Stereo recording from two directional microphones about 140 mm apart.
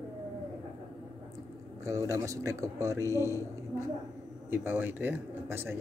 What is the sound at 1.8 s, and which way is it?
A man's voice, 20° right (ahead or behind).